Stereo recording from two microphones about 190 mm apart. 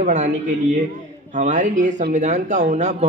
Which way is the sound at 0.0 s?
40° right (ahead or behind).